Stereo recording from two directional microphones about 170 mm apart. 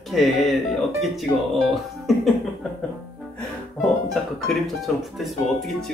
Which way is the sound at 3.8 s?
Centre (ahead or behind).